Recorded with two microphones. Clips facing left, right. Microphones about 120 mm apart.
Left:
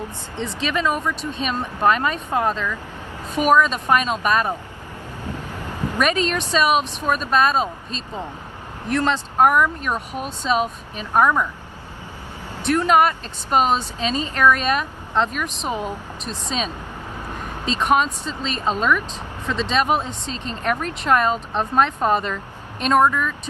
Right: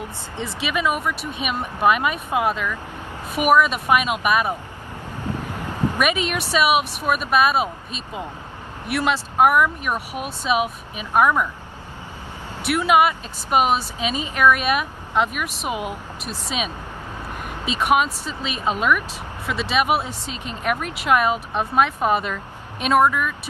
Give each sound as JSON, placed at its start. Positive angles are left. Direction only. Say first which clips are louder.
{"t": 0.6, "sound": "speech", "louder": "even", "side_deg": -15}
{"t": 5.2, "sound": "vehicle", "louder": "right 3 dB", "side_deg": -15}
{"t": 6.5, "sound": "speech", "louder": "right 1 dB", "side_deg": -10}
{"t": 12.5, "sound": "speech", "louder": "left 1 dB", "side_deg": -10}